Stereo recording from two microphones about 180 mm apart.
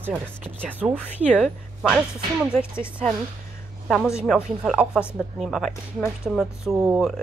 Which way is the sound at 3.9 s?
Centre (ahead or behind).